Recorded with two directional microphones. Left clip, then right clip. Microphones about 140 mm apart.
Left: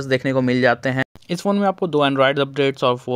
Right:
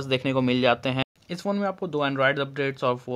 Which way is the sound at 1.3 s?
55° left (ahead or behind).